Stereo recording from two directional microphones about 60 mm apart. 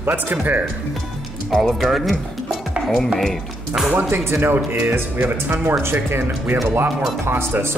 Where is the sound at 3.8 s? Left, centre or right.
Right.